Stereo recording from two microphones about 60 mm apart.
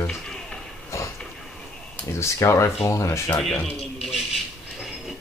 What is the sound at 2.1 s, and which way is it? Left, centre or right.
Speech, left.